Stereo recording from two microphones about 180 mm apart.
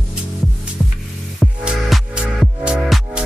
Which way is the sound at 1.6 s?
5° right (ahead or behind).